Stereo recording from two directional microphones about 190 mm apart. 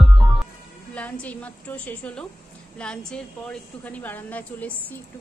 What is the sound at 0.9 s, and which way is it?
A woman's voice, 5° left (ahead or behind).